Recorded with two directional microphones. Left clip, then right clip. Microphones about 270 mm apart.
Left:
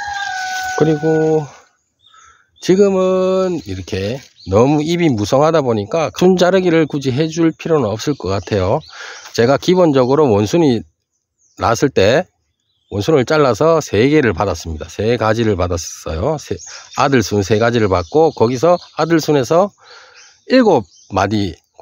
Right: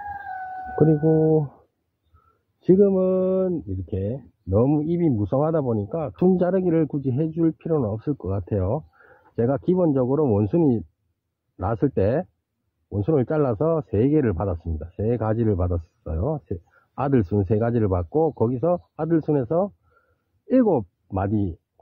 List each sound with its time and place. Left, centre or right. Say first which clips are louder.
0.7 s speech: left 4 dB; centre
2.6 s speech: left 5 dB; centre
2.9 s speech: left 7 dB; centre